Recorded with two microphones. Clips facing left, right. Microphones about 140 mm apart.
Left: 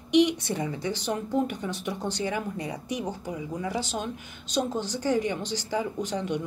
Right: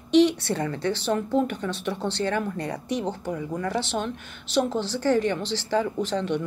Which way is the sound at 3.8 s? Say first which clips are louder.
Right 3 dB; 70° right (ahead or behind).